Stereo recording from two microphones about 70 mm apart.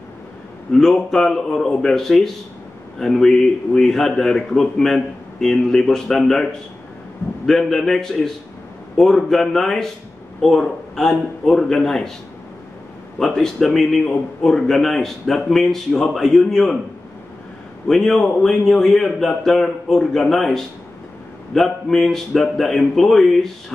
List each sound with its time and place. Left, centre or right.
0.7 s a man's voice: centre
13.2 s a man's voice: centre
17.8 s a man's voice: centre